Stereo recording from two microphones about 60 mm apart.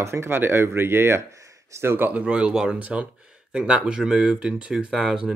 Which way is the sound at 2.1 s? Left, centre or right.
Right.